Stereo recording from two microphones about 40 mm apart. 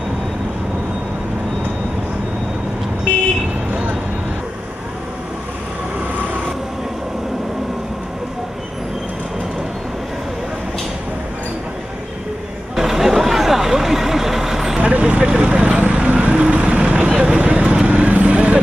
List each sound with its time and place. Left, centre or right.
12.7 s vehicle: centre
14.8 s vehicle: right
17.2 s a sound: right
17.8 s vehicle: right